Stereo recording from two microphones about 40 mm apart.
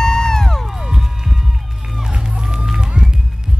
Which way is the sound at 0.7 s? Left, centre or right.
Centre.